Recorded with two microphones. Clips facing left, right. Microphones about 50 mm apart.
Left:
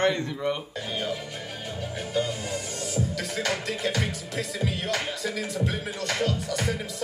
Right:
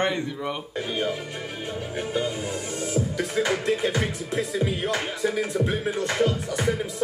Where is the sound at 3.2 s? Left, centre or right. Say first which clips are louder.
Right 5 dB; right.